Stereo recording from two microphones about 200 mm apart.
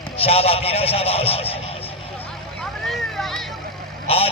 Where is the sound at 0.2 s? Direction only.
30° left (ahead or behind).